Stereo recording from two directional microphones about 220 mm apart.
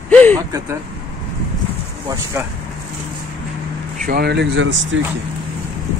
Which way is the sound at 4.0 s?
45° right (ahead or behind).